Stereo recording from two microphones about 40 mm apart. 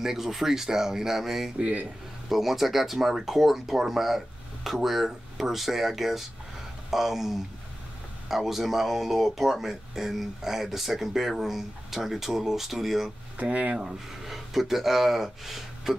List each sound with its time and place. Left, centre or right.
0.0 s speech: centre
1.6 s speech: right
2.2 s speech: centre
13.4 s speech: right
13.7 s speech: centre